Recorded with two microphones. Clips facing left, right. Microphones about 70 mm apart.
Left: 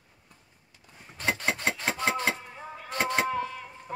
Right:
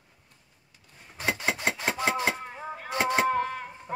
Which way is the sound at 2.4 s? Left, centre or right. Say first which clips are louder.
Right 4 dB; right.